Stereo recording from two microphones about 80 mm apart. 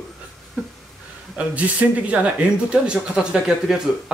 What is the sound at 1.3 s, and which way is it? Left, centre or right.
Speech, centre.